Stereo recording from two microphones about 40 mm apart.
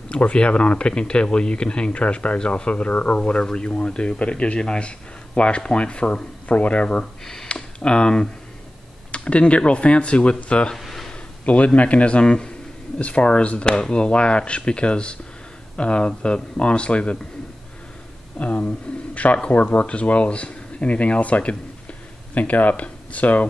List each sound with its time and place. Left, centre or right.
0.1 s speech: left
3.2 s a man's voice: left
10.8 s a sound: centre
11.4 s a man's voice: left
13.7 s speech: left
18.4 s a man's voice: left